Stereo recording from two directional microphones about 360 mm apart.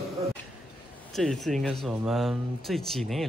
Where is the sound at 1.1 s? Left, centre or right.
Centre.